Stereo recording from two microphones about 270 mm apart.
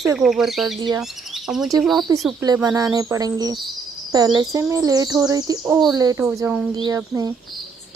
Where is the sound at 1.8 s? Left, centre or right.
Centre.